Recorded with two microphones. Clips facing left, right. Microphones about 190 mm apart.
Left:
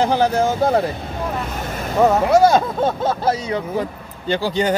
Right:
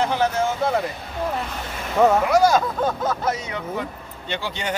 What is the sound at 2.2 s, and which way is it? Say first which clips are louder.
Speech: left 4 dB; 25° left (ahead or behind).